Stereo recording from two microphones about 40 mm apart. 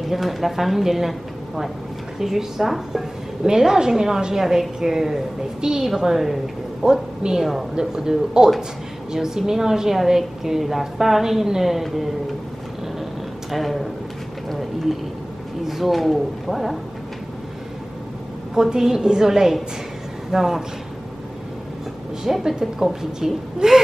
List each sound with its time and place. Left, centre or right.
0.1 s a woman's voice: centre
13.5 s a woman's voice: centre
15.6 s a woman's voice: centre
18.5 s a woman's voice: centre
22.2 s a woman's voice: centre